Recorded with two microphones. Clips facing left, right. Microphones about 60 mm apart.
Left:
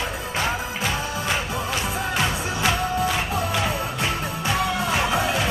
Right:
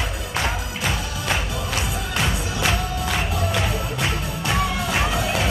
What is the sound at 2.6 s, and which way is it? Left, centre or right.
Music, left.